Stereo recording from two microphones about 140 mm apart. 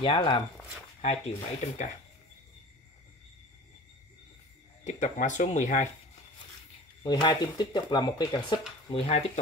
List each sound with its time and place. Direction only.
0.0 s speech: 35° left (ahead or behind)
1.0 s speech: 55° left (ahead or behind)
4.8 s speech: 60° left (ahead or behind)
7.0 s speech: 35° left (ahead or behind)
9.0 s speech: 50° left (ahead or behind)